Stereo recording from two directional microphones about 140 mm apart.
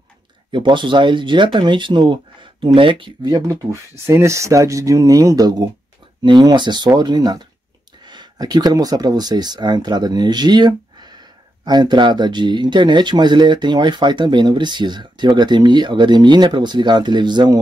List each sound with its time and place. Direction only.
0.5 s speech: 35° right (ahead or behind)